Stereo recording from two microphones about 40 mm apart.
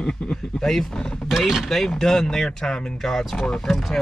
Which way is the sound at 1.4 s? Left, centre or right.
Centre.